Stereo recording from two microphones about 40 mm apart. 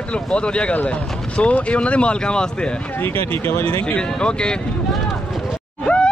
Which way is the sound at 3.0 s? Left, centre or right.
Left.